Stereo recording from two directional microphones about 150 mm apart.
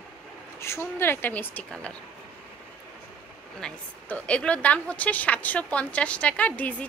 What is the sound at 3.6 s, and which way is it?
A woman's voice, 5° left (ahead or behind).